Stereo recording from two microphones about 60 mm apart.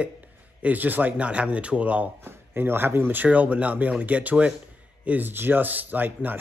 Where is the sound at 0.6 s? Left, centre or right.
Right.